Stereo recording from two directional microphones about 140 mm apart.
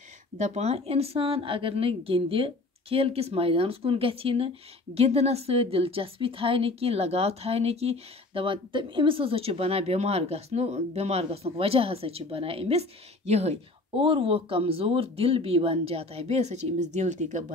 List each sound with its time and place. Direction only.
0.4 s a woman's voice: 50° right (ahead or behind)